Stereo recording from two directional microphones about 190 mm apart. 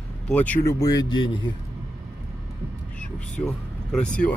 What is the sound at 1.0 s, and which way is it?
Speech, 25° left (ahead or behind).